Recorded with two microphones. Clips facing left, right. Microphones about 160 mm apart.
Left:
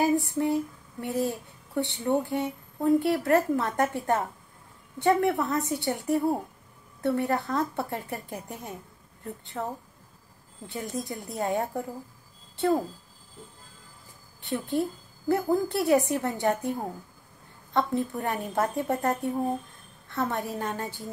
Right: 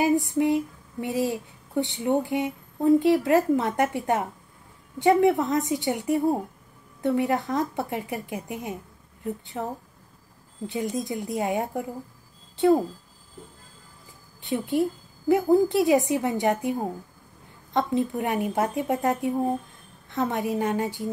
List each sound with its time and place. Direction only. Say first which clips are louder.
0.1 s a woman's voice: right 3 dB; 20° right (ahead or behind)
10.7 s a woman's voice: right 5 dB; 20° right (ahead or behind)
14.4 s a woman's voice: right 4 dB; 20° right (ahead or behind)
18.6 s speech: left 2 dB; centre (ahead or behind)
19.0 s a woman's voice: right 3 dB; 20° right (ahead or behind)